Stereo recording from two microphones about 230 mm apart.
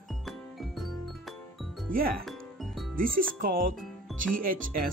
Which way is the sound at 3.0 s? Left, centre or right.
Right.